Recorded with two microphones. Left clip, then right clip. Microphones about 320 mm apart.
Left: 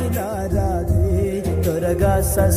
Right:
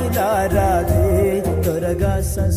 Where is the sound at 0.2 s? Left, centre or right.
Right.